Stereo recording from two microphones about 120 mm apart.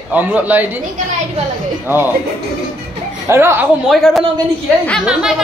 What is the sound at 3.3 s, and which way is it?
Speech, 20° right (ahead or behind).